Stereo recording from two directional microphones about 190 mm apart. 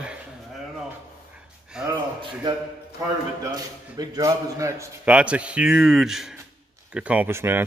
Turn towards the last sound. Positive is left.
turn(degrees=-10)  # may be behind; listen again after turning